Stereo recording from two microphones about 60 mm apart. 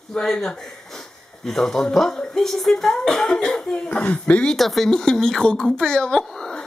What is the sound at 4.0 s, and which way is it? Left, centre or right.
Speech, left.